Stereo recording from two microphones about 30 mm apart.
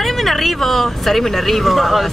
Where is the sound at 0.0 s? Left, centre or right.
Centre.